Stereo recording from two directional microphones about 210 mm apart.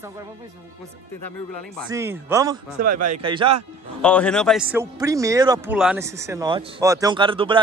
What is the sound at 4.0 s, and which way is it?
A man's voice, 5° left (ahead or behind).